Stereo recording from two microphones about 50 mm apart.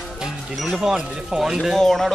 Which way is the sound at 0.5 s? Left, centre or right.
Centre.